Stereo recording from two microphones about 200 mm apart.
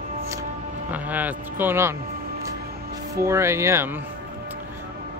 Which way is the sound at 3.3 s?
15° right (ahead or behind).